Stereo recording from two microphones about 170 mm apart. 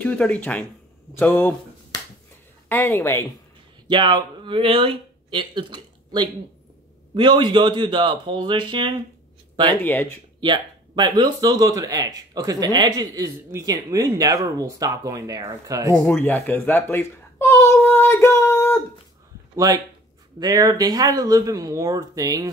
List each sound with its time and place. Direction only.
0.0 s speech: 10° left (ahead or behind)
2.7 s speech: 10° left (ahead or behind)
3.8 s speech: 25° right (ahead or behind)
9.9 s speech: 10° left (ahead or behind)
10.4 s speech: 25° right (ahead or behind)
16.1 s a sound: 10° left (ahead or behind)
19.5 s speech: 20° right (ahead or behind)